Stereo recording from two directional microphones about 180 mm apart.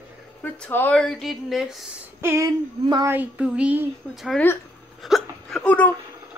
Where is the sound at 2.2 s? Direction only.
15° right (ahead or behind).